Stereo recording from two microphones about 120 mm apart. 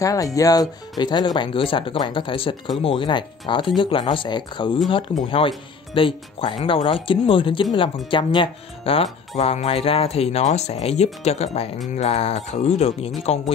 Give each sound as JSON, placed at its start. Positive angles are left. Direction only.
{"t": 0.0, "sound": "speech", "side_deg": 30}
{"t": 9.4, "sound": "speech", "side_deg": 65}